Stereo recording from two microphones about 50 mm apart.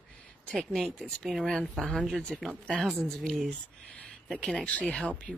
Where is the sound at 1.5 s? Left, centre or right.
Centre.